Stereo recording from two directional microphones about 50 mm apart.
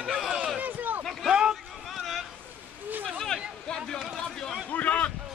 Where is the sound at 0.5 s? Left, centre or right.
Right.